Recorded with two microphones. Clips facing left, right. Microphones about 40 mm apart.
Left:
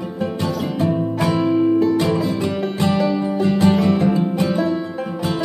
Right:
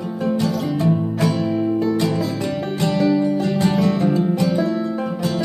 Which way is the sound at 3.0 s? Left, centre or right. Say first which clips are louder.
Right 1 dB; centre.